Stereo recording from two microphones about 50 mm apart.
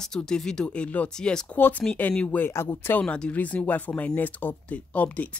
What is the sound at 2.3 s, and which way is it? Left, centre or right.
Speech, left.